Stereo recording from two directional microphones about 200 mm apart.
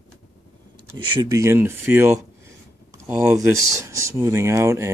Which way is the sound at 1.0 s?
20° right (ahead or behind).